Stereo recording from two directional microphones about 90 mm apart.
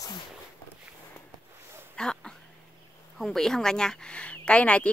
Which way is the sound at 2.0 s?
10° left (ahead or behind).